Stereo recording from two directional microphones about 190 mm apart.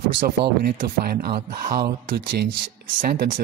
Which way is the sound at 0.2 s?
50° right (ahead or behind).